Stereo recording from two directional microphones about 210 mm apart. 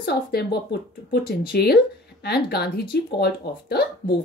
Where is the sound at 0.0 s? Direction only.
50° left (ahead or behind).